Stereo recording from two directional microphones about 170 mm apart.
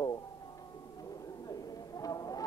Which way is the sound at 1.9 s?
20° left (ahead or behind).